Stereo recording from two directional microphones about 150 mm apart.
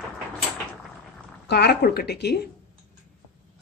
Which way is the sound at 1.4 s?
90° left.